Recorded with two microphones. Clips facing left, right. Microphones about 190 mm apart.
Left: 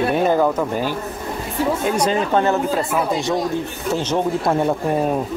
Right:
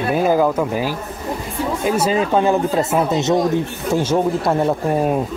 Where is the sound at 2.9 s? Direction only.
25° right (ahead or behind).